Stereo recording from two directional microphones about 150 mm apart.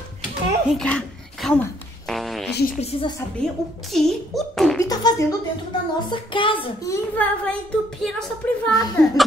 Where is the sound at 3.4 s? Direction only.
Centre (ahead or behind).